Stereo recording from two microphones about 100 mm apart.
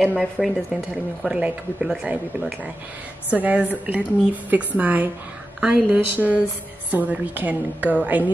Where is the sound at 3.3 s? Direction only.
15° right (ahead or behind).